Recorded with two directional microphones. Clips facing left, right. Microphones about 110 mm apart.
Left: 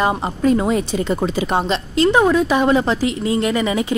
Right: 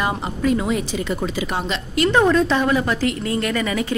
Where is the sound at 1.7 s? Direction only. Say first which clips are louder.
Left 4 dB; 30° left (ahead or behind).